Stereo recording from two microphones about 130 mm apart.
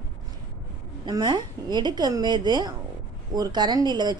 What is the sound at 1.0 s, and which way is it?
A woman's voice, 30° right (ahead or behind).